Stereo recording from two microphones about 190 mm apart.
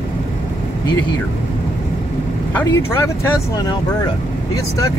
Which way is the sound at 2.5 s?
15° left (ahead or behind).